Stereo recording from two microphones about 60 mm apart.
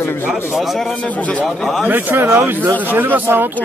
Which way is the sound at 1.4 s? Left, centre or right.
Centre.